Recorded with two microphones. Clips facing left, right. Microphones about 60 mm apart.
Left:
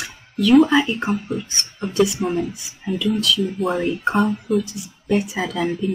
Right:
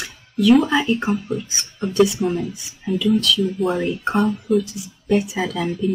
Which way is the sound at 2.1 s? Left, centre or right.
Left.